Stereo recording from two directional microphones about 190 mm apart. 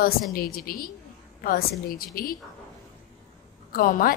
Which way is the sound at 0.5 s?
50° left (ahead or behind).